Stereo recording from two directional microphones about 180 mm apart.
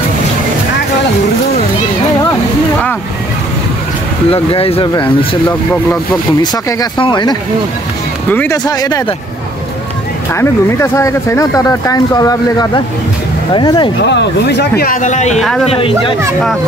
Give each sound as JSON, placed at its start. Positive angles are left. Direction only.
{"t": 4.3, "sound": "speech", "side_deg": 30}
{"t": 6.4, "sound": "speech", "side_deg": 25}
{"t": 8.3, "sound": "speech", "side_deg": 10}
{"t": 8.6, "sound": "speech", "side_deg": 20}
{"t": 10.3, "sound": "speech", "side_deg": 15}
{"t": 14.0, "sound": "speech", "side_deg": 75}